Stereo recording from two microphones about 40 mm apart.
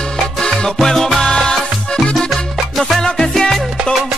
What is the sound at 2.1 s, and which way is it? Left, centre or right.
Music, centre.